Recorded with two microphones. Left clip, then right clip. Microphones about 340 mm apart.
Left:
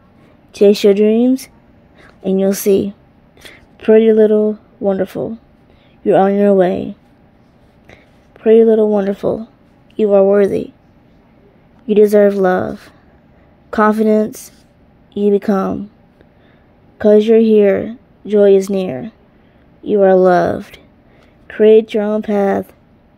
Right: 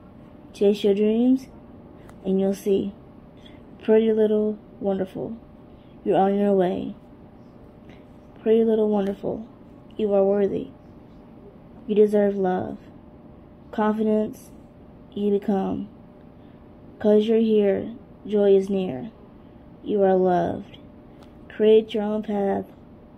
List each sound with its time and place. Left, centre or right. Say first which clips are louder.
0.5 s speech: left 10 dB; left
7.9 s speech: left 4 dB; left
11.9 s speech: left 10 dB; left
17.0 s speech: left 10 dB; left